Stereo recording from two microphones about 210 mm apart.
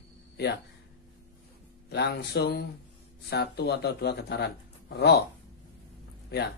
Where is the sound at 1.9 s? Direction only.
50° left (ahead or behind).